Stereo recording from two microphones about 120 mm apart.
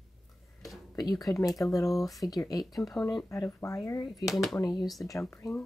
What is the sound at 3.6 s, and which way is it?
Speech, 25° left (ahead or behind).